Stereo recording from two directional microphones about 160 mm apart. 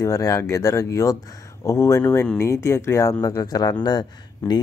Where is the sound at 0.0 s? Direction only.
20° left (ahead or behind).